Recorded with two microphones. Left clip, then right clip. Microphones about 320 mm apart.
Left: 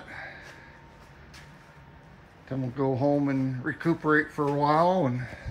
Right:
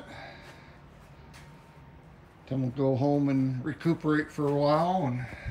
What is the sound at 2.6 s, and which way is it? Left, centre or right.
Speech, centre.